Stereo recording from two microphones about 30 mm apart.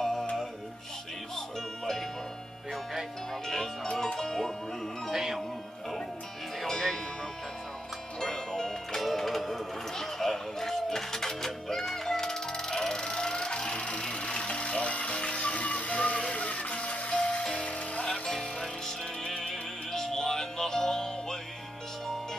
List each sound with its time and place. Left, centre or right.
0.0 s music: centre
2.7 s music: centre
3.4 s music: centre
5.1 s music: centre
6.7 s music: centre
8.2 s music: centre; by 15.5 s left
15.5 s music: left
17.1 s music: left
18.6 s music: centre